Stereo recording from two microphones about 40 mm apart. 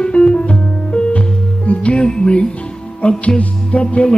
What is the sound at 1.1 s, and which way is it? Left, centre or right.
Music, left.